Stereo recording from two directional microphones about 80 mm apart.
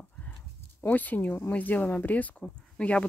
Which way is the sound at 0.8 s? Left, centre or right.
Left.